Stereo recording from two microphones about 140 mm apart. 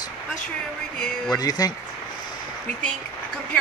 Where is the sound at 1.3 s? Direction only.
25° left (ahead or behind).